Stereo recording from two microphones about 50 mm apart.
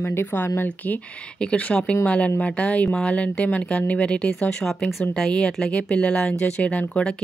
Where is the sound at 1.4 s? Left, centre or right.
Left.